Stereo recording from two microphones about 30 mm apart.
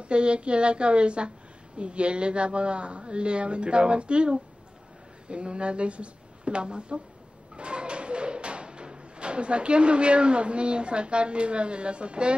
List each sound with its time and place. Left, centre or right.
0.0 s speech: right